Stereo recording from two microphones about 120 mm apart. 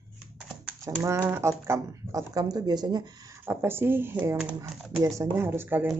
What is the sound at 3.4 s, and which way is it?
Speech, 20° right (ahead or behind).